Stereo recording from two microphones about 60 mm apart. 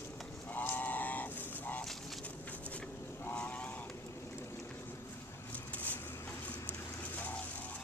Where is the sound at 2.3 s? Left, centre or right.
Left.